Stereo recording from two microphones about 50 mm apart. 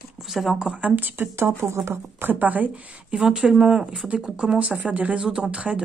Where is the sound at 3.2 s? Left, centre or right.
Centre.